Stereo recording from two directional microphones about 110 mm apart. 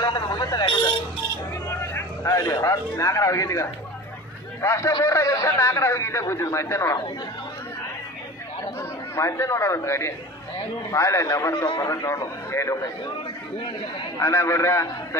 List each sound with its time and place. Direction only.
0.0 s a sound: 40° left (ahead or behind)
1.7 s a man's voice: 25° left (ahead or behind)
9.1 s a man's voice: 25° left (ahead or behind)
11.5 s speech: 45° left (ahead or behind)
11.9 s a man's voice: 30° left (ahead or behind)
14.2 s a man's voice: 20° left (ahead or behind)